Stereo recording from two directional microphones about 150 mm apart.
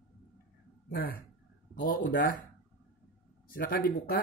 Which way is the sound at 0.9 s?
75° left (ahead or behind).